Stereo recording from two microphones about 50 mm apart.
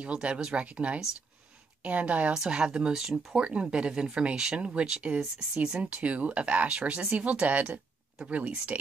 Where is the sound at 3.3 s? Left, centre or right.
Centre.